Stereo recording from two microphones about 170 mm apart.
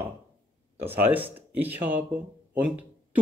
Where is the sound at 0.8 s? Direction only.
10° right (ahead or behind).